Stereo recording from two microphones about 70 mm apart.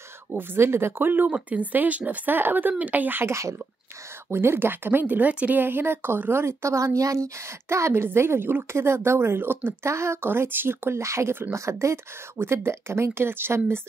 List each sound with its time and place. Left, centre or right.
0.3 s speech: right
9.8 s speech: right